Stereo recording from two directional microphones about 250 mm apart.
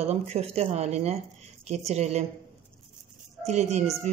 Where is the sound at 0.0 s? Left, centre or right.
Right.